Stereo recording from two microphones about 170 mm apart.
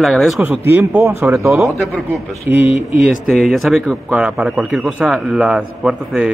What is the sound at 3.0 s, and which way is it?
Speech, centre (ahead or behind).